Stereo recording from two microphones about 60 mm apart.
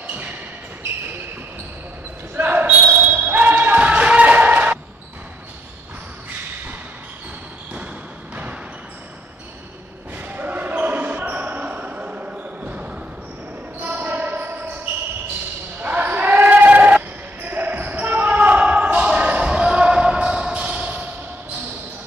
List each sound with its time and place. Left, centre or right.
0.0 s a sound: right
2.3 s basketball bounce: right
10.1 s basketball bounce: right
15.8 s basketball bounce: right